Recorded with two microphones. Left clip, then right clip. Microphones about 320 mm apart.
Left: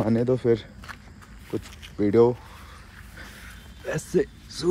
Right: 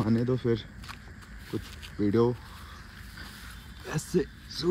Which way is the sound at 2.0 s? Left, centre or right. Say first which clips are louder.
Left 7 dB; centre.